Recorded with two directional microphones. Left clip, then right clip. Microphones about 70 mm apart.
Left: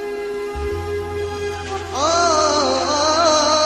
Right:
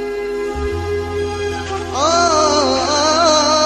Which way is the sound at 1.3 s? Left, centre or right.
Right.